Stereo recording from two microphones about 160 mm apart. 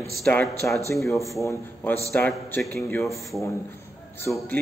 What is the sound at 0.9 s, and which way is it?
A man's voice, 20° left (ahead or behind).